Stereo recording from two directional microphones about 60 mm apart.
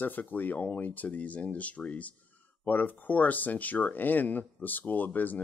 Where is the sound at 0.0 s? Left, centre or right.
Left.